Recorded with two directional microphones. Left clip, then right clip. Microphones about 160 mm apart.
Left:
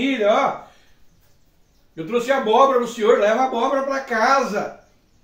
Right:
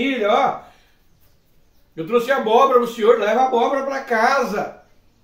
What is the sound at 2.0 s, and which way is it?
Speech, 20° right (ahead or behind).